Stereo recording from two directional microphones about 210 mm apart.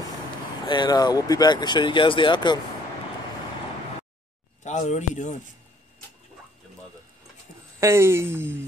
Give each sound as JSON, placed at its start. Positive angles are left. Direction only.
{"t": 0.7, "sound": "speech", "side_deg": 20}
{"t": 4.6, "sound": "speech", "side_deg": 35}
{"t": 7.8, "sound": "speech", "side_deg": -10}